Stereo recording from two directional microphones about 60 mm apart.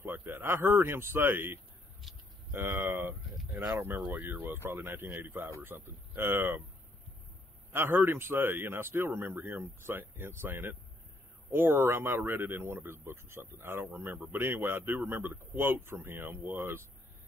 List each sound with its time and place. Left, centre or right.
0.0 s speech: right
2.0 s speech: centre
2.5 s speech: right
7.7 s speech: right